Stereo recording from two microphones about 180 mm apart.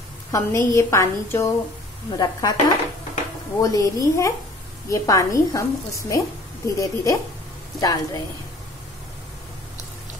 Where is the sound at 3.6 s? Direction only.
20° left (ahead or behind).